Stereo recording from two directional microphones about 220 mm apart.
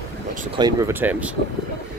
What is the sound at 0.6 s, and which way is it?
Speech, 10° right (ahead or behind).